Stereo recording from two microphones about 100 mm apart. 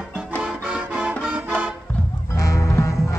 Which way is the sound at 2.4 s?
30° left (ahead or behind).